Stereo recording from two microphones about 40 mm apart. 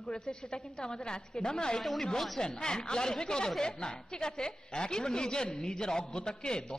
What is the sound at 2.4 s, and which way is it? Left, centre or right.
A woman's voice, centre.